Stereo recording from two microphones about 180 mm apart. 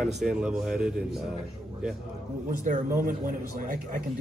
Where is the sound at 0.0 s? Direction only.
5° right (ahead or behind).